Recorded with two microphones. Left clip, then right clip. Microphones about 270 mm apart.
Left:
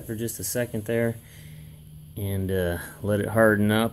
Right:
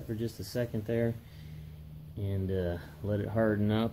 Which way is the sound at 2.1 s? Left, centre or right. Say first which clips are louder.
Left 7 dB; centre.